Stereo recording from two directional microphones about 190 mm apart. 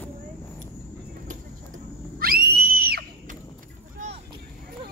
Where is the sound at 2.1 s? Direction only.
50° right (ahead or behind).